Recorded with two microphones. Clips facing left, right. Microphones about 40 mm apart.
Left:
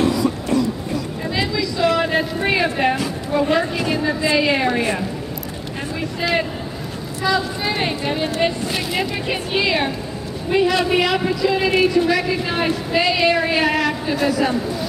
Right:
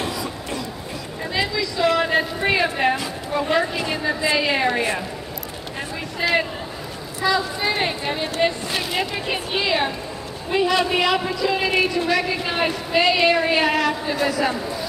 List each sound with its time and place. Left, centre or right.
0.0 s train: right
1.3 s a sound: centre
3.3 s speech: centre
3.7 s a woman's voice: centre
4.0 s a woman's voice: centre
6.2 s a woman's voice: centre